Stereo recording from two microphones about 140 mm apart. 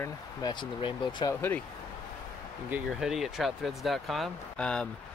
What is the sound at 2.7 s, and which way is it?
Speech, 5° right (ahead or behind).